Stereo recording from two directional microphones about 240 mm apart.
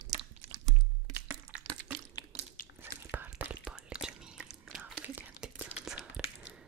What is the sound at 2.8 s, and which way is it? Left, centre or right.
Whispering, centre.